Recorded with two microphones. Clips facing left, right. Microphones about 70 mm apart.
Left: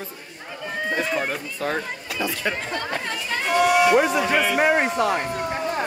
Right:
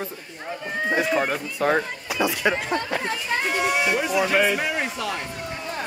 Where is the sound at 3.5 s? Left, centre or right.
Left.